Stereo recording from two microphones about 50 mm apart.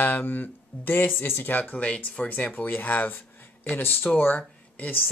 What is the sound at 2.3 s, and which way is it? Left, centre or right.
Speech, left.